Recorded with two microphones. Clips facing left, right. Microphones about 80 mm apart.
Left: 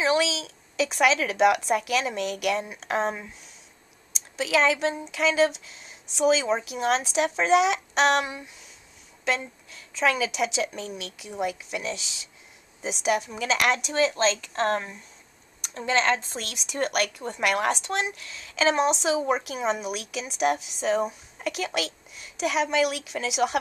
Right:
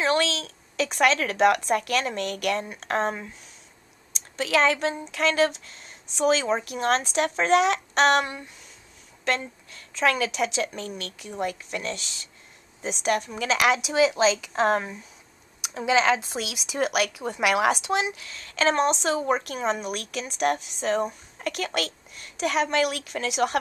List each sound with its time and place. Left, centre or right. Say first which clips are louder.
0.0 s speech: even; centre